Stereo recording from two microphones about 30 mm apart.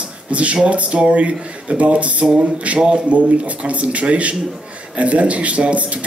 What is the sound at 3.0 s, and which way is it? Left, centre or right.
Speech, right.